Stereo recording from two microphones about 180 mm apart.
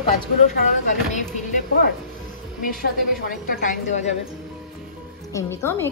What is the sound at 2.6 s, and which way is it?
A woman's voice, 55° left (ahead or behind).